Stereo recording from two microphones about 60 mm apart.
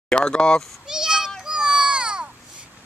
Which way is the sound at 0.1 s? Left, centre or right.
Centre.